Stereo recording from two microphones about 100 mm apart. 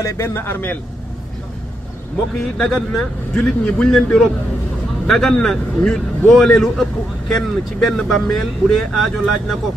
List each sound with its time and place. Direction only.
0.0 s a man's voice: 25° left (ahead or behind)
2.5 s a man's voice: 5° left (ahead or behind)